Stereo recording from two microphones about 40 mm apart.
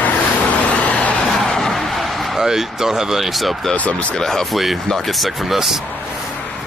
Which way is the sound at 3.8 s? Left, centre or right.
Left.